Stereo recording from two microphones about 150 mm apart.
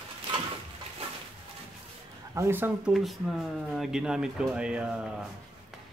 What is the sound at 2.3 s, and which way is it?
Speech, 15° right (ahead or behind).